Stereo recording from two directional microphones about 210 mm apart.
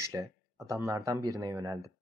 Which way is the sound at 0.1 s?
15° right (ahead or behind).